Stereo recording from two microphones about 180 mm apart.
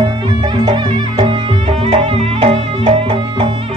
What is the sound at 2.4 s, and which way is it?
Music, 35° right (ahead or behind).